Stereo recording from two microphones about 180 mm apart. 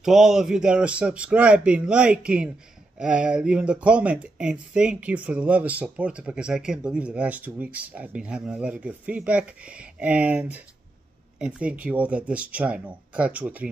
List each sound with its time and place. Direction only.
0.0 s speech: centre (ahead or behind)